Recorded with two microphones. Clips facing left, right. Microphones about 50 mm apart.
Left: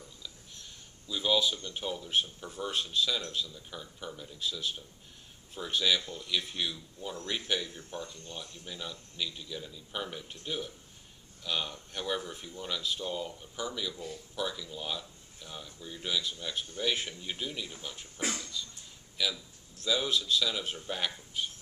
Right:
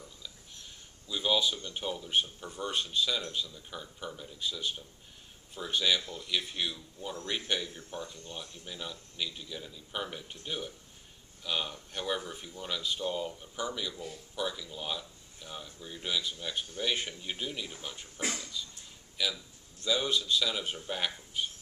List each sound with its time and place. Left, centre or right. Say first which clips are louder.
1.0 s speech: left 1 dB; centre
6.0 s speech: even; centre